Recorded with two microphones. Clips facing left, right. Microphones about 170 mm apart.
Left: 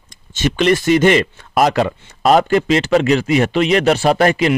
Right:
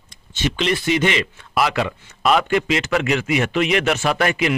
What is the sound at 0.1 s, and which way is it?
Speech, 45° left (ahead or behind).